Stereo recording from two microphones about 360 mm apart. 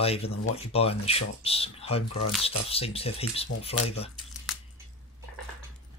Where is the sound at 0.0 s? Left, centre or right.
Centre.